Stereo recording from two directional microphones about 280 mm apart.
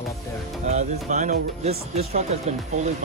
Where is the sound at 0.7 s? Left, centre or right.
Right.